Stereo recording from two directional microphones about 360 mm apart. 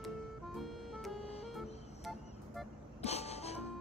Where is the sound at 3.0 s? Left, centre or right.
Centre.